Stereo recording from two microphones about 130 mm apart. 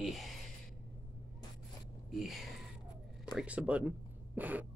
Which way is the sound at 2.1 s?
Centre (ahead or behind).